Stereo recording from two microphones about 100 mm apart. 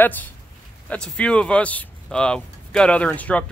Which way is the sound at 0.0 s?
20° left (ahead or behind).